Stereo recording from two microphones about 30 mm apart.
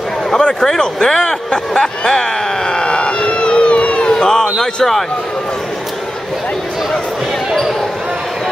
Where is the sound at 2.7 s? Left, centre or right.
Left.